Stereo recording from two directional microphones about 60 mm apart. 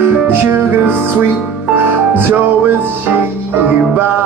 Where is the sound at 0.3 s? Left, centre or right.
Right.